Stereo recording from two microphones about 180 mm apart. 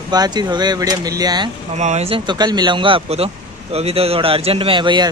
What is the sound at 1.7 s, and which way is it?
Speech, 40° right (ahead or behind).